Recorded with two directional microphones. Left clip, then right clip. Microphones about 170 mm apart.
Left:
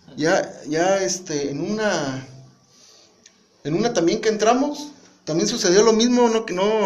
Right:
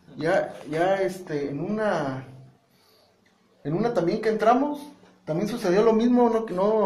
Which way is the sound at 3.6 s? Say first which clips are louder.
Left 4 dB; 35° left (ahead or behind).